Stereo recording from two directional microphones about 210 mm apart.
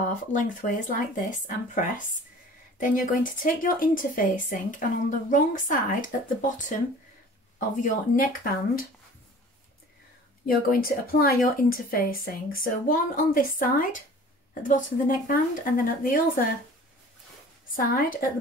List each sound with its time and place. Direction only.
0.1 s speech: 35° left (ahead or behind)
7.5 s speech: 40° left (ahead or behind)
10.4 s speech: 45° left (ahead or behind)
17.7 s speech: 40° left (ahead or behind)